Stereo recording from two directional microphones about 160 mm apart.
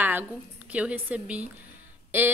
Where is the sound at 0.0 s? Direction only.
10° right (ahead or behind).